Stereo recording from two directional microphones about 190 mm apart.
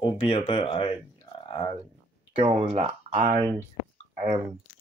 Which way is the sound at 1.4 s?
25° left (ahead or behind).